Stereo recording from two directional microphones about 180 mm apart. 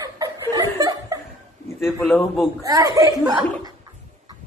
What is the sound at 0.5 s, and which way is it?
Chuckle, 20° right (ahead or behind).